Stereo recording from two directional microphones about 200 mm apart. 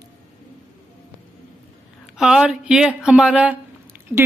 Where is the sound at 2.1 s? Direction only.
5° right (ahead or behind).